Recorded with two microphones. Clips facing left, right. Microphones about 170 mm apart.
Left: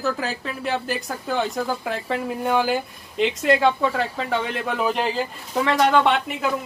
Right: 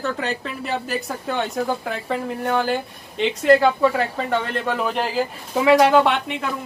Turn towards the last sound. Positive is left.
turn(degrees=0)  # may be behind; listen again after turning